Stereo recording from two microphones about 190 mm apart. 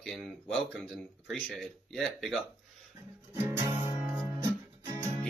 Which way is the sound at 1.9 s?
Centre (ahead or behind).